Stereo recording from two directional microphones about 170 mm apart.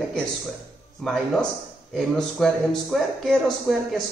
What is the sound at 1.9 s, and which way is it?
A man's voice, centre (ahead or behind).